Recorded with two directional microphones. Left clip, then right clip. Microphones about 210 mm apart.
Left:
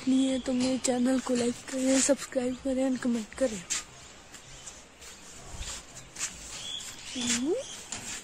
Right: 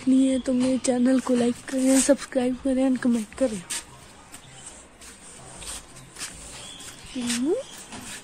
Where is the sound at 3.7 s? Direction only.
40° right (ahead or behind).